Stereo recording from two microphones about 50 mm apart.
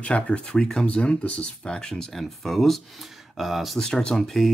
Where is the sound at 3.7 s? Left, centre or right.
Centre.